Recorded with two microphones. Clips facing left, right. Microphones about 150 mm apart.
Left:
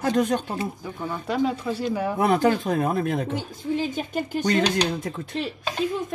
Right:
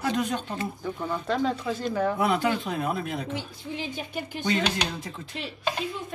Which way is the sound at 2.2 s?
45° left (ahead or behind).